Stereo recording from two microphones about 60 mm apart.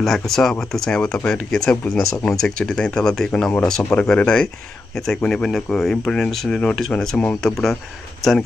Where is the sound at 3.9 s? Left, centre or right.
Centre.